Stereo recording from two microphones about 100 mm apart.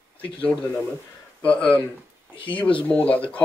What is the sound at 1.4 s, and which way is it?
Speech, 15° left (ahead or behind).